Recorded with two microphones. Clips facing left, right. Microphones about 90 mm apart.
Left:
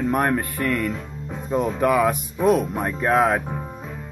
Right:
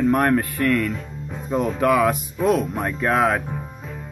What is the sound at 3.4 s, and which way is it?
Music, 25° left (ahead or behind).